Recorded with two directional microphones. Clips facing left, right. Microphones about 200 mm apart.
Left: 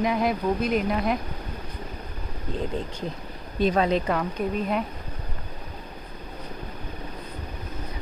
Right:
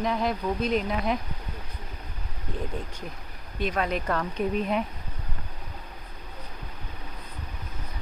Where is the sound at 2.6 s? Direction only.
25° left (ahead or behind).